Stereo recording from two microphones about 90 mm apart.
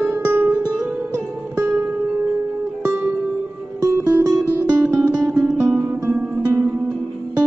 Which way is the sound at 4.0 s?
10° right (ahead or behind).